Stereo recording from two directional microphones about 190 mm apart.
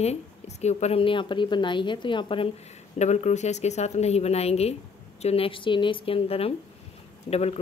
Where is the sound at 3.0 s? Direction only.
35° left (ahead or behind).